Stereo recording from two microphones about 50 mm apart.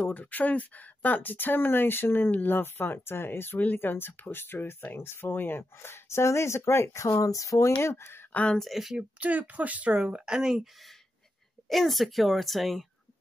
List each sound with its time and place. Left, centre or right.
0.0 s speech: left
8.5 s speech: centre
8.9 s speech: right; by 10.7 s centre
11.7 s speech: centre